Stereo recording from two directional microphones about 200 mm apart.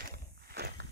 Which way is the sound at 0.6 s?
55° right (ahead or behind).